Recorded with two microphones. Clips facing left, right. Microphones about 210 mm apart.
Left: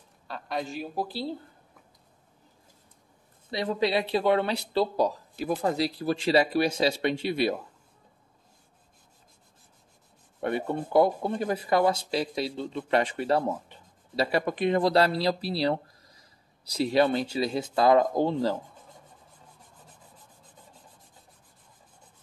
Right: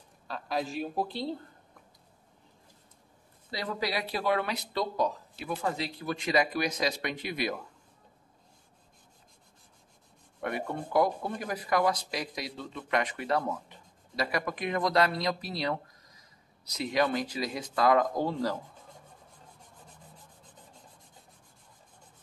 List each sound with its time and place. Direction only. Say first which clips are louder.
0.3 s a man's voice: even; centre (ahead or behind)
3.4 s speech: left 6 dB; 25° left (ahead or behind)
10.4 s speech: left 5 dB; 30° left (ahead or behind)